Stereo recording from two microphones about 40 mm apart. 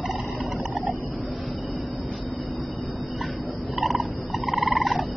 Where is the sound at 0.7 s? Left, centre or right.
Right.